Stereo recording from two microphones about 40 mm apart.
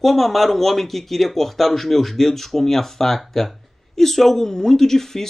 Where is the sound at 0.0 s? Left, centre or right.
Centre.